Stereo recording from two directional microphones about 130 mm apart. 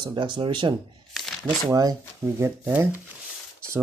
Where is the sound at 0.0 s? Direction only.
35° right (ahead or behind).